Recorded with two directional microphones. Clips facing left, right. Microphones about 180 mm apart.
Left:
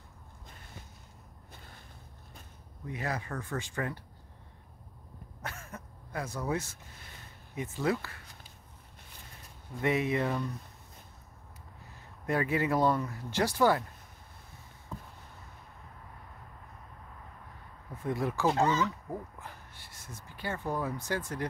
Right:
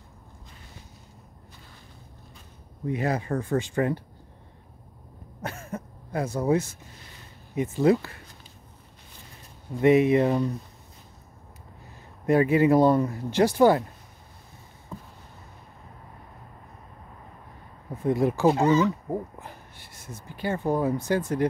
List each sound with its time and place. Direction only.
2.9 s speech: 25° right (ahead or behind)
5.4 s throat clearing: 25° right (ahead or behind)
7.5 s speech: 20° right (ahead or behind)
9.8 s speech: 20° right (ahead or behind)
12.3 s speech: 20° right (ahead or behind)
12.9 s speech: 30° right (ahead or behind)
13.3 s speech: 20° right (ahead or behind)
14.9 s a sound: centre (ahead or behind)
17.8 s speech: 25° right (ahead or behind)
19.0 s a sound: 30° right (ahead or behind)
20.1 s speech: 25° right (ahead or behind)